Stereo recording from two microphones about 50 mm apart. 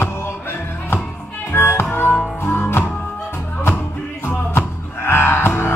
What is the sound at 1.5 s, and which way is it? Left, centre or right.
Music, left.